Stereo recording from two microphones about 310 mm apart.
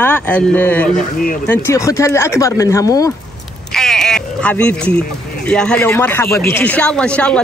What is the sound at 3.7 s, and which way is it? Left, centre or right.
Sheep, centre.